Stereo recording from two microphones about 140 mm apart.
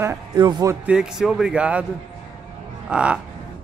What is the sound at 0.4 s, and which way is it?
Speech, 30° right (ahead or behind).